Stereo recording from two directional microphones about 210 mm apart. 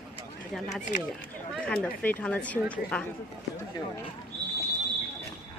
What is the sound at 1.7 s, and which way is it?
A woman's voice, 10° left (ahead or behind).